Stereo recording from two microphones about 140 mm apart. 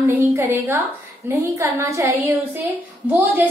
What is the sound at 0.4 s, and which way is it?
A woman's voice, 15° right (ahead or behind).